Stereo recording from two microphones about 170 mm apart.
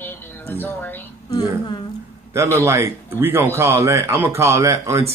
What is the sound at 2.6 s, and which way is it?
Speech, 15° right (ahead or behind).